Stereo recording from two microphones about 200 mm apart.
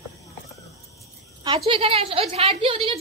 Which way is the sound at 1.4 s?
25° right (ahead or behind).